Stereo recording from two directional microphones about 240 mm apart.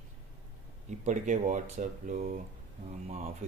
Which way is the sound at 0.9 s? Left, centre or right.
Right.